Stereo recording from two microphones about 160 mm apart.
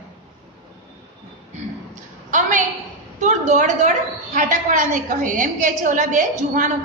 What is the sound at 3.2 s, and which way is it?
A woman's voice, 50° right (ahead or behind).